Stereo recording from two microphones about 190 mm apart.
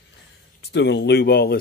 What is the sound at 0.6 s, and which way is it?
Speech, 65° left (ahead or behind).